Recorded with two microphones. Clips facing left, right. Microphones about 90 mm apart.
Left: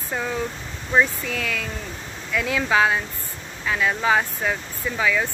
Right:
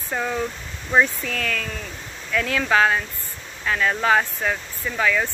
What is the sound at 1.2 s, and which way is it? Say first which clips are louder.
Speech: right 1 dB; 10° left (ahead or behind).